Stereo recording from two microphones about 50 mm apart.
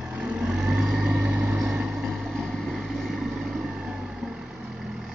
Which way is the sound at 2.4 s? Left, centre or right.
Centre.